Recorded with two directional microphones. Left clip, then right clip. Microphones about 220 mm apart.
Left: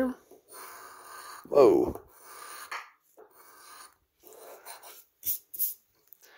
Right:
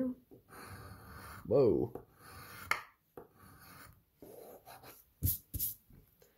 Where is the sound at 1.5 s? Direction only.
30° left (ahead or behind).